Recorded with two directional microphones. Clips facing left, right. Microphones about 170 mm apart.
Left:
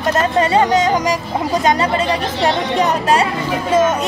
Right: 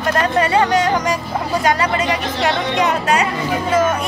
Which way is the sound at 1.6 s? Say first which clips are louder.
Left 1 dB; 25° left (ahead or behind).